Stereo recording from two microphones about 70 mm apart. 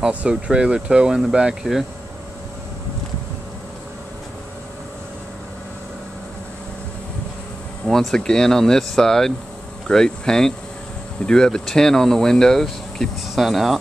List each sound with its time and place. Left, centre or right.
0.0 s speech: centre
7.8 s speech: centre